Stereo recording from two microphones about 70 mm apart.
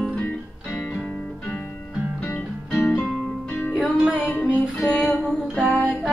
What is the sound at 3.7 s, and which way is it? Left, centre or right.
Music, centre.